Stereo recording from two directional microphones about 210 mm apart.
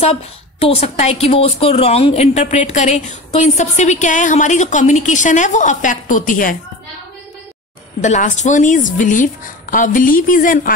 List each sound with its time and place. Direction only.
0.0 s a woman's voice: 30° left (ahead or behind)
8.0 s a woman's voice: 35° left (ahead or behind)